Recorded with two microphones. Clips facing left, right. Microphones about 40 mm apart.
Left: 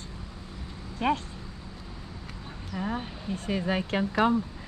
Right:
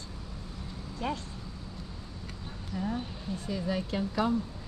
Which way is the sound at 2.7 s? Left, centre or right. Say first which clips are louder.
Left 2 dB; left.